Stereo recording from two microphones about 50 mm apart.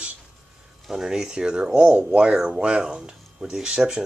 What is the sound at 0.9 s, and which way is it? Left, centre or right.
Speech, centre.